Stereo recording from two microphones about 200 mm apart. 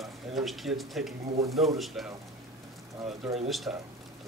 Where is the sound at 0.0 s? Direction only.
Centre (ahead or behind).